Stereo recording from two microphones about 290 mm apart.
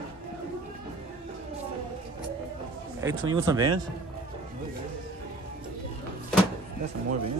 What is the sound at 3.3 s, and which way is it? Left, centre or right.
Speech, centre.